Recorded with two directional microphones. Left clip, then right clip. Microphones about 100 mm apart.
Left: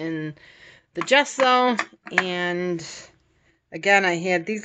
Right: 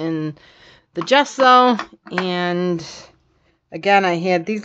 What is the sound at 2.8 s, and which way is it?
Speech, 35° right (ahead or behind).